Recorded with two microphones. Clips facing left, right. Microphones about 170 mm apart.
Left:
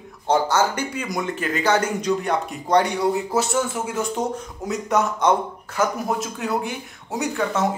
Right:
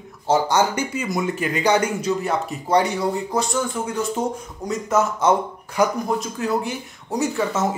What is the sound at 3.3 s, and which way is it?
Speech, 5° left (ahead or behind).